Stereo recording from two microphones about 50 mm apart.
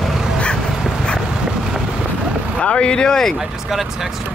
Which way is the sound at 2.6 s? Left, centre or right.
Left.